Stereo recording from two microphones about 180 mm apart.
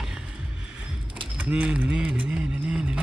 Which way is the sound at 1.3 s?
5° right (ahead or behind).